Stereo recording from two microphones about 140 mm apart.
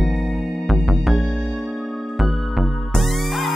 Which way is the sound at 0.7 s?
Centre (ahead or behind).